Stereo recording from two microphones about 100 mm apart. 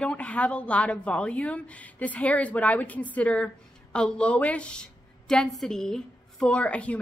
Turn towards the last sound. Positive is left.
turn(degrees=10)  # may be behind; listen again after turning